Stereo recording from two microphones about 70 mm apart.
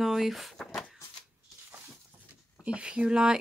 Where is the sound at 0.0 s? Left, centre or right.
Centre.